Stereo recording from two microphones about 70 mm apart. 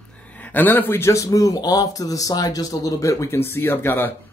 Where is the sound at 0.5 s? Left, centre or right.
Left.